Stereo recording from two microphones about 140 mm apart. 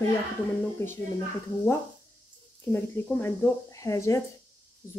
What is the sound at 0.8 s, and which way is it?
Speech, 20° left (ahead or behind).